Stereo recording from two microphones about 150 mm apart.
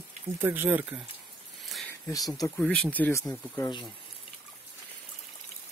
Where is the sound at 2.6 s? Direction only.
10° left (ahead or behind).